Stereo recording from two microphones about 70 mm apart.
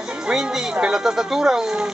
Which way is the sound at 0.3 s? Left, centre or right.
Centre.